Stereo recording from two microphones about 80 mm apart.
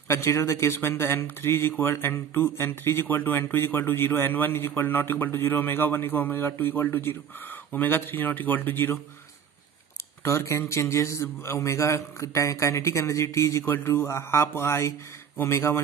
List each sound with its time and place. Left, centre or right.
0.1 s a man's voice: left
10.2 s a man's voice: left